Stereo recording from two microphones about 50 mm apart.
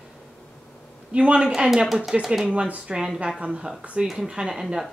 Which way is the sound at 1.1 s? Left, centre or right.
Right.